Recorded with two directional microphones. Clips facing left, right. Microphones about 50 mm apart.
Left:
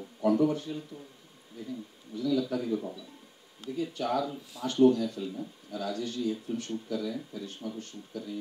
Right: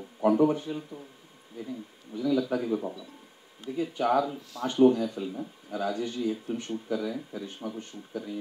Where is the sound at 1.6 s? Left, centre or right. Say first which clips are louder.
Right 2 dB; right.